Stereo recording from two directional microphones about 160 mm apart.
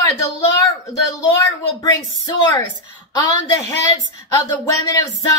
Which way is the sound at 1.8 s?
20° left (ahead or behind).